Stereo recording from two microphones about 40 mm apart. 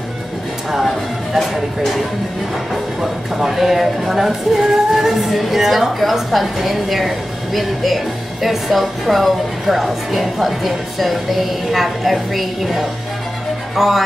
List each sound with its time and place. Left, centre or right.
0.7 s music: centre
1.4 s speech: centre